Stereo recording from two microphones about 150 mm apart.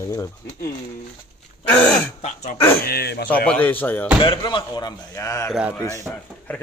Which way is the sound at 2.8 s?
90° left.